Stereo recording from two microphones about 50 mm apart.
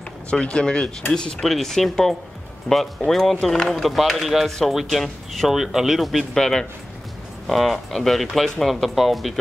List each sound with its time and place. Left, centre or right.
0.3 s speech: left
1.5 s speech: centre
4.5 s speech: centre
4.7 s speech: centre